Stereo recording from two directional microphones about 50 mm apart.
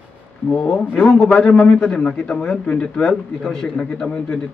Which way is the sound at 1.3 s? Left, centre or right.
Centre.